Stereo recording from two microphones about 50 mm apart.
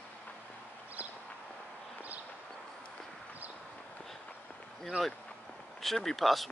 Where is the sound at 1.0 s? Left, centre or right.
Right.